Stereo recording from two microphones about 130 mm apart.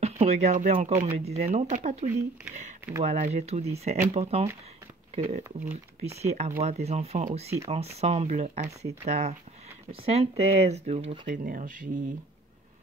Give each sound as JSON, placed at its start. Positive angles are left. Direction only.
{"t": 0.0, "sound": "speech", "side_deg": -55}
{"t": 0.7, "sound": "speech", "side_deg": -55}
{"t": 9.8, "sound": "speech", "side_deg": -50}